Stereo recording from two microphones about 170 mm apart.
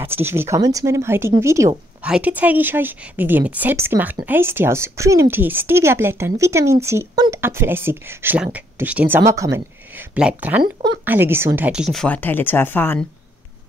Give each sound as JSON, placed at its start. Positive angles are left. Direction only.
{"t": 0.0, "sound": "a woman's voice", "side_deg": -15}
{"t": 10.1, "sound": "a woman's voice", "side_deg": -10}